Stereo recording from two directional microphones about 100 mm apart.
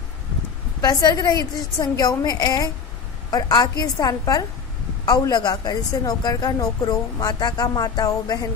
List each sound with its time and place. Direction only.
0.7 s a woman's voice: 40° left (ahead or behind)